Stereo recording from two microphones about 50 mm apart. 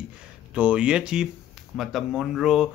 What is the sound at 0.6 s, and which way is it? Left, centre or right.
Speech, right.